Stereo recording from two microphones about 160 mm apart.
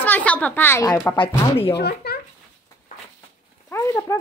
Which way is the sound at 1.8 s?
90° left.